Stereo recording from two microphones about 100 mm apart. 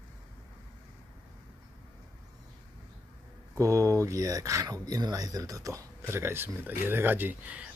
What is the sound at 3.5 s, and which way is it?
Speech, 35° right (ahead or behind).